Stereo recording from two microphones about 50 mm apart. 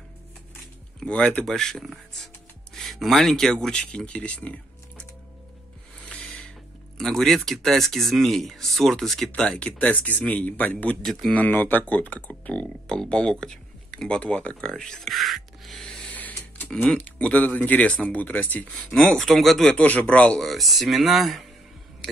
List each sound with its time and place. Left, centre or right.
0.9 s speech: left
1.4 s speech: centre
5.9 s snort: left
7.0 s speech: centre
9.4 s speech: left
11.0 s speech: centre
11.3 s speech: left
12.8 s speech: centre
15.8 s a sound: centre
16.1 s a sound: left
16.8 s speech: left
18.9 s speech: centre
19.7 s speech: left
20.3 s speech: centre